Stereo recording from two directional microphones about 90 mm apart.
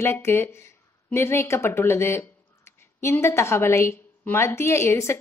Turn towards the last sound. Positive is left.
turn(degrees=30)  # may be behind; listen again after turning